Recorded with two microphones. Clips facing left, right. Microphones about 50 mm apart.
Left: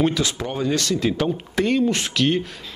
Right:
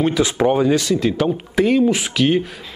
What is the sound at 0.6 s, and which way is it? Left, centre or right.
Speech, centre.